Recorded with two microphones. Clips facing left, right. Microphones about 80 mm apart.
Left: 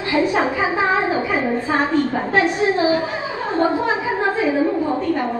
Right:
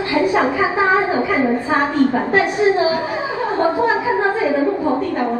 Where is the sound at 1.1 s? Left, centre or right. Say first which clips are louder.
Right 3 dB; right.